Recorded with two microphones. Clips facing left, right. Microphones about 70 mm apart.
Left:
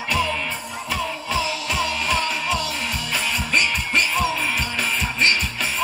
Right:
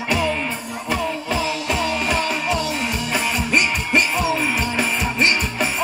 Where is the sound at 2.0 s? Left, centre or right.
Centre.